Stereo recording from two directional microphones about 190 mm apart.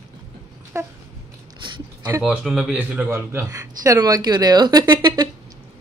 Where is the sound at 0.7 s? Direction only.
15° right (ahead or behind).